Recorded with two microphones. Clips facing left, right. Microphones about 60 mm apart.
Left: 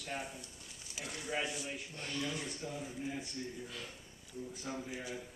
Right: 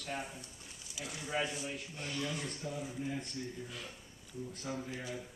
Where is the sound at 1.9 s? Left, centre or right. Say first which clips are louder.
Even; centre.